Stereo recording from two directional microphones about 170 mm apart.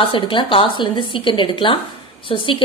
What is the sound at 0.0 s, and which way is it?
A woman's voice, 30° left (ahead or behind).